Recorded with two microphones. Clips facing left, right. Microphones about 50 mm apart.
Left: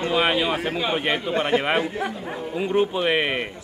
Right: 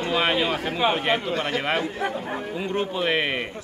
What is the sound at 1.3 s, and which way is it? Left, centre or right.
A man's voice, left.